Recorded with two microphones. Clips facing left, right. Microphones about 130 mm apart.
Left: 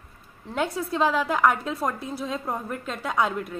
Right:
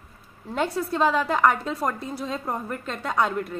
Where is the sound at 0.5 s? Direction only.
Centre (ahead or behind).